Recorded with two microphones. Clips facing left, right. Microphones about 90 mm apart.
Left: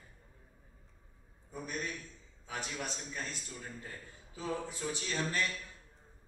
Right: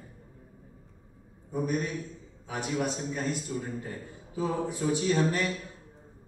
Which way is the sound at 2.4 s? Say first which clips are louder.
Right 9 dB; 15° right (ahead or behind).